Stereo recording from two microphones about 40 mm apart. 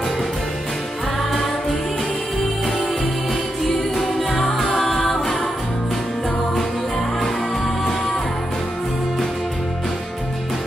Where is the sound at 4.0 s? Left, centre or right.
Centre.